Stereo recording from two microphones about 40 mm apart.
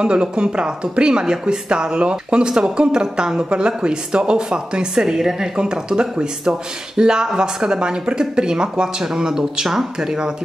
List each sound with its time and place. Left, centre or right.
0.0 s speech: right